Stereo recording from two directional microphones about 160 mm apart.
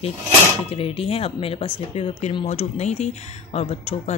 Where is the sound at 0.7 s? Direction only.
35° left (ahead or behind).